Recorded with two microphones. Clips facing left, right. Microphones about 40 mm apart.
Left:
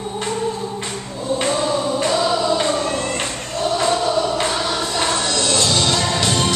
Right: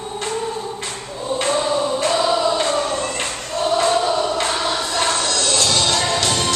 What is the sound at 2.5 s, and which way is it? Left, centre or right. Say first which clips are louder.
Choir: even; centre.